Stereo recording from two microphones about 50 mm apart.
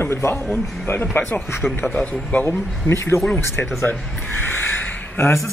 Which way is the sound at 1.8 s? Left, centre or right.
Left.